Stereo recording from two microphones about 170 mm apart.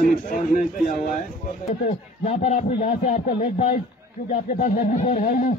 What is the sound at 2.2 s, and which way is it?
Speech, 45° left (ahead or behind).